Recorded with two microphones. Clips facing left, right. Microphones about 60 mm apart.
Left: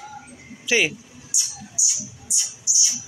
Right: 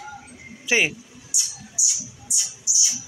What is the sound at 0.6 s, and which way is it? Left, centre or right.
Speech, right.